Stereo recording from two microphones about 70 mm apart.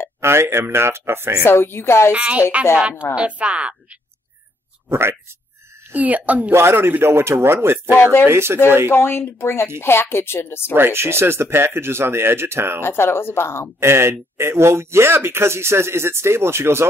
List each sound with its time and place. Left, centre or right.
0.2 s speech: right
1.4 s a woman's voice: left
2.1 s speech: centre
4.8 s speech: right
5.9 s speech: right
6.5 s speech: right
8.9 s a woman's voice: left
10.7 s speech: right
12.8 s a woman's voice: left
13.7 s speech: right